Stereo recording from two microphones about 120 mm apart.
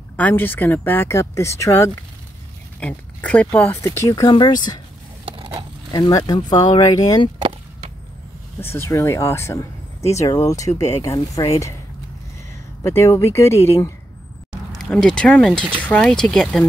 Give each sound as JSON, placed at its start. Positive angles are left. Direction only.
{"t": 0.2, "sound": "speech", "side_deg": 15}
{"t": 2.8, "sound": "speech", "side_deg": 10}
{"t": 5.2, "sound": "a sound", "side_deg": -45}
{"t": 5.9, "sound": "speech", "side_deg": 35}
{"t": 8.5, "sound": "speech", "side_deg": 20}
{"t": 12.8, "sound": "speech", "side_deg": 25}
{"t": 14.8, "sound": "speech", "side_deg": 5}